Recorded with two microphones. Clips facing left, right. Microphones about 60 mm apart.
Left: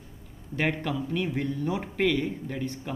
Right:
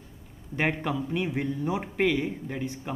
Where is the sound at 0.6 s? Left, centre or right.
Centre.